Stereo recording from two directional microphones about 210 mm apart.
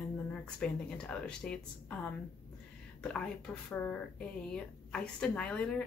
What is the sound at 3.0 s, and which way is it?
A woman's voice, 5° left (ahead or behind).